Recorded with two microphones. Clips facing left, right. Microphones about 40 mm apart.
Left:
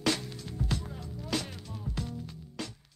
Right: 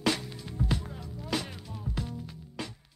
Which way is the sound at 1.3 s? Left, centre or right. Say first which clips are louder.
Right 1 dB; centre.